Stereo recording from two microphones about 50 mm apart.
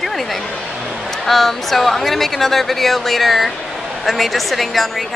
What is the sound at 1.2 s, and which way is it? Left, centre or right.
Speech, centre.